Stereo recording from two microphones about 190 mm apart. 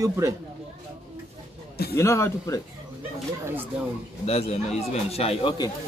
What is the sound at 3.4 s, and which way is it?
Speech, 10° right (ahead or behind).